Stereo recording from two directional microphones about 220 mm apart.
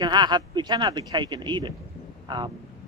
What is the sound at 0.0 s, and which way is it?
Speech, 20° right (ahead or behind).